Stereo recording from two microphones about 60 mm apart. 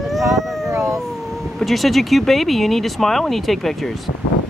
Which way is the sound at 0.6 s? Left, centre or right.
Right.